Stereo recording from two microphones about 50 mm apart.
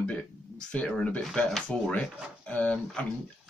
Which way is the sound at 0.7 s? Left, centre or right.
Centre.